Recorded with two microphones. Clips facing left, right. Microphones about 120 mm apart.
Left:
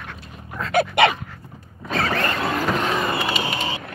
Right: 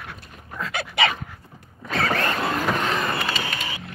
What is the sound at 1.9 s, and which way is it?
Vehicle, centre (ahead or behind).